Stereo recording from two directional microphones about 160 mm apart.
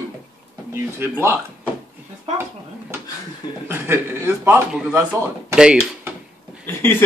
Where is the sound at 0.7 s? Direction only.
15° right (ahead or behind).